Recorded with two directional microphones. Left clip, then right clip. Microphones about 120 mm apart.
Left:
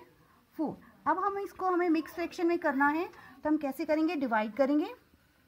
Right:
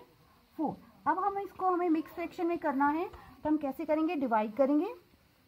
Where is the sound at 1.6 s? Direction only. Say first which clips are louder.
Left 1 dB; 15° right (ahead or behind); by 4.9 s 35° right (ahead or behind).